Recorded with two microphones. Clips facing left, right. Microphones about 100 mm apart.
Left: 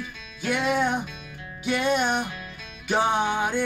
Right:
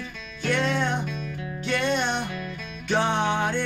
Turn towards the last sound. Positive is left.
turn(degrees=5)  # may be behind; listen again after turning